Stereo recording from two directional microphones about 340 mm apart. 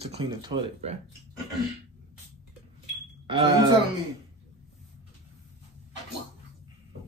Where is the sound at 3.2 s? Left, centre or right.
Centre.